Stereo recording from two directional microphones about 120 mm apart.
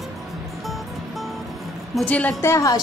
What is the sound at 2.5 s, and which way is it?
Speech, 30° left (ahead or behind).